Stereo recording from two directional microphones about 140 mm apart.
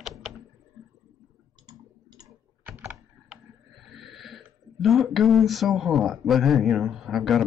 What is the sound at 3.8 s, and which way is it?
Speech, centre (ahead or behind).